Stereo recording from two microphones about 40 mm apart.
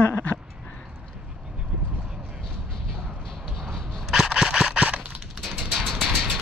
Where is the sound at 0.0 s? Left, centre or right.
Left.